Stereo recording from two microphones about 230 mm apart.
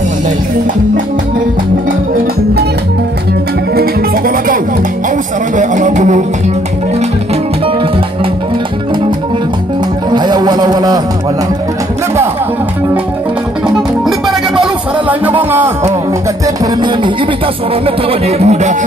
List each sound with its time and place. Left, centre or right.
5.6 s music: right
10.1 s a sound: centre
13.7 s music: centre
17.8 s speech: right